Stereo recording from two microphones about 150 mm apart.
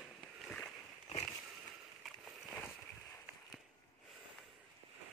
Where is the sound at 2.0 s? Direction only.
Centre (ahead or behind).